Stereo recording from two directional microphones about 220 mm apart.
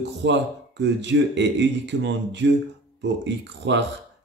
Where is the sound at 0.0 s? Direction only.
55° right (ahead or behind).